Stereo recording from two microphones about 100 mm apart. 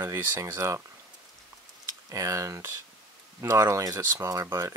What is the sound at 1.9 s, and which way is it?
Speech, 35° right (ahead or behind).